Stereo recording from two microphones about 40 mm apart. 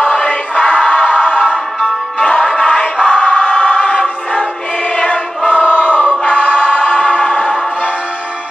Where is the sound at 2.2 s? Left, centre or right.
Left.